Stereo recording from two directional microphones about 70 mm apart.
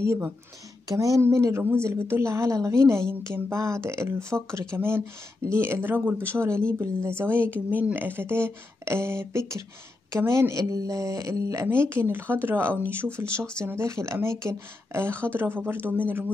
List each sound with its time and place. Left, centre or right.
0.0 s a woman's voice: right
1.2 s a woman's voice: right
10.6 s speech: right